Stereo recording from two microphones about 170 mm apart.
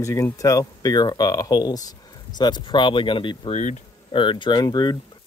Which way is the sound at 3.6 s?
45° left (ahead or behind).